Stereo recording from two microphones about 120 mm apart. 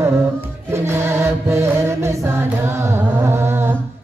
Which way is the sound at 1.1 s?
20° right (ahead or behind).